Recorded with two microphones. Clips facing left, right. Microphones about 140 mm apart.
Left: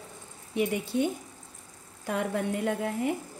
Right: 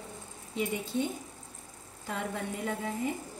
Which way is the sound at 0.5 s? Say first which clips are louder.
Left 4 dB; 75° left (ahead or behind).